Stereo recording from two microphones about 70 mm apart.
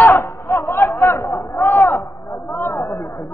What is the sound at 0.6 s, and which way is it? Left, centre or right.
Chatter, left.